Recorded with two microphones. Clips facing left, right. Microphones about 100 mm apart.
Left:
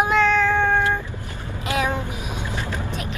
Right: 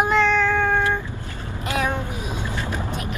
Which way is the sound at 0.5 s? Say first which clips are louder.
Left 1 dB; 20° left (ahead or behind).